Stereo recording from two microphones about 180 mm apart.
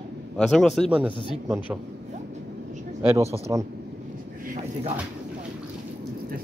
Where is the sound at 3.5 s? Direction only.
20° right (ahead or behind).